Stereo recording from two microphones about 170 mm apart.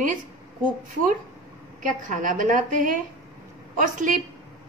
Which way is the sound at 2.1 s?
50° right (ahead or behind).